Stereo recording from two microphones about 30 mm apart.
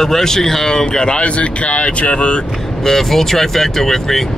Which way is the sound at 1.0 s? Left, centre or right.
Left.